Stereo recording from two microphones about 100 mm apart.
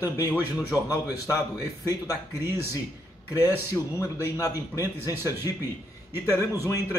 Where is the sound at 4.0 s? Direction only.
35° left (ahead or behind).